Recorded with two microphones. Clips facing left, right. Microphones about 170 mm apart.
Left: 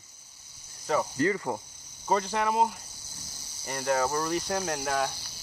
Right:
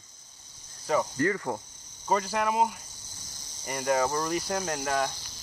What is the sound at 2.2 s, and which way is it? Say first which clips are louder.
Speech: even; 10° right (ahead or behind).